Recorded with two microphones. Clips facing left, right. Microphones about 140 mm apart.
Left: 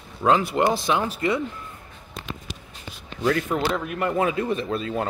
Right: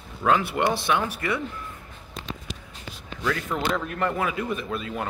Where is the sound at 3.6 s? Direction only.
15° left (ahead or behind).